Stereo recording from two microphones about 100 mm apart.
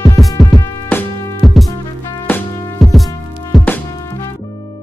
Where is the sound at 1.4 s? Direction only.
Centre (ahead or behind).